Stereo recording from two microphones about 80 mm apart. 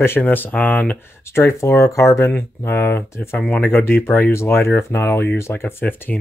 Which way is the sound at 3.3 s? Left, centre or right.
Centre.